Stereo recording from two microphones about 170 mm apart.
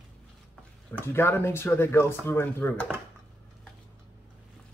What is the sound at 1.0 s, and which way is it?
Speech, 15° left (ahead or behind).